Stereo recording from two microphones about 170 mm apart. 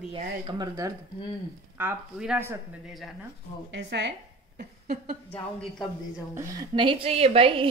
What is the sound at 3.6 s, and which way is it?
Speech, 90° right.